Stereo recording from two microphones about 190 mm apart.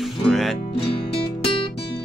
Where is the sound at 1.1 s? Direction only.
30° left (ahead or behind).